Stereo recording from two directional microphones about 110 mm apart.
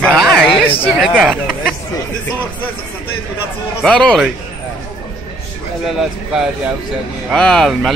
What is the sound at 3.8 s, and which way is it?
Speech, 10° left (ahead or behind).